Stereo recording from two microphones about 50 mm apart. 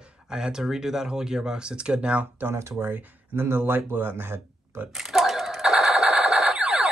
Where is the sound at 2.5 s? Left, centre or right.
Right.